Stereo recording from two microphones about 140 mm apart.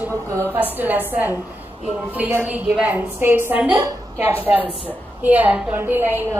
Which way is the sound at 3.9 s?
30° right (ahead or behind).